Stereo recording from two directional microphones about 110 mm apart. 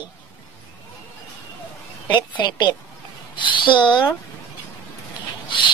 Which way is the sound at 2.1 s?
45° left (ahead or behind).